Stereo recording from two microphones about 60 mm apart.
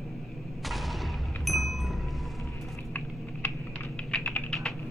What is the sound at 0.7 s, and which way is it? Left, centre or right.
Thump, centre.